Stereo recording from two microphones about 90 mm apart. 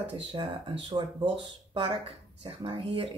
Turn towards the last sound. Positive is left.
turn(degrees=-85)